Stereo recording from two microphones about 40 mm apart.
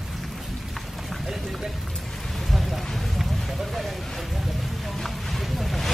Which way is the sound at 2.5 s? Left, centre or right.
Centre.